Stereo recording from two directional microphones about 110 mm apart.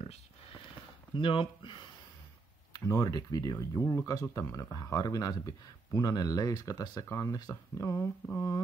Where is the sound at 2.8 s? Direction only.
30° left (ahead or behind).